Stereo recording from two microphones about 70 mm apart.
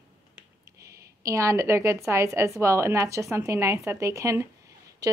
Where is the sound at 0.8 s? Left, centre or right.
Right.